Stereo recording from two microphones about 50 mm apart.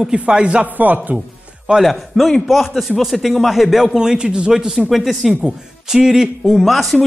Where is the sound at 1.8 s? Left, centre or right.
Centre.